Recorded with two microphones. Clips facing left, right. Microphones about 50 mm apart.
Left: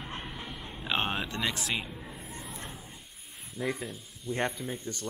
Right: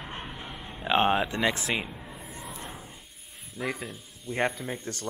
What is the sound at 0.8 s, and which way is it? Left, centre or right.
Speech, centre.